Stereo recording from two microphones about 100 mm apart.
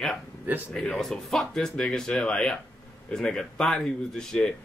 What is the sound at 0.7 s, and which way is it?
A man's voice, 5° left (ahead or behind).